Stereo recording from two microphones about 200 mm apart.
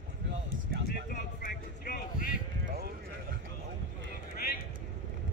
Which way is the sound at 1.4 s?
40° left (ahead or behind).